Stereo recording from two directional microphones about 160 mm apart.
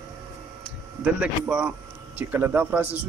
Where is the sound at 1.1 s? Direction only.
5° right (ahead or behind).